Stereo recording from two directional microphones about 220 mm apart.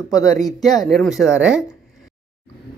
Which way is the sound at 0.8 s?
Centre (ahead or behind).